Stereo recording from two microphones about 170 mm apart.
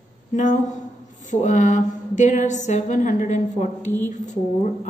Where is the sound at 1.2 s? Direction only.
45° left (ahead or behind).